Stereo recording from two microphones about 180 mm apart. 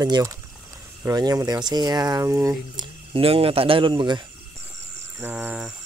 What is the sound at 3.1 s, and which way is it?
Speech, 30° right (ahead or behind).